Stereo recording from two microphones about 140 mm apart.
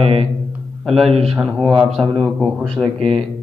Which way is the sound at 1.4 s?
5° right (ahead or behind).